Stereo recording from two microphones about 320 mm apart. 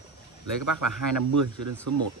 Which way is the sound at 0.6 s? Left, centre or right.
Right.